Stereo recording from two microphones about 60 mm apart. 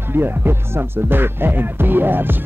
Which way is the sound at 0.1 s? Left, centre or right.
Right.